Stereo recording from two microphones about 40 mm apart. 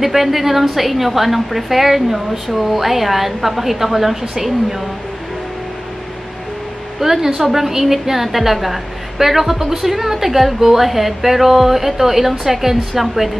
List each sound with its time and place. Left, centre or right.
0.0 s a woman's voice: centre
7.0 s a woman's voice: centre